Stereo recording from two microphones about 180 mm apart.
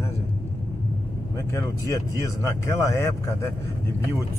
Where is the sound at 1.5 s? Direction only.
20° left (ahead or behind).